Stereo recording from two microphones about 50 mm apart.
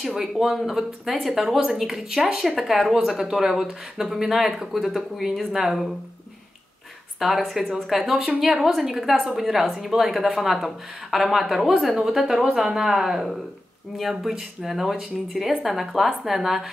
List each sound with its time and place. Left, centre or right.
0.0 s speech: centre
7.2 s a woman's voice: centre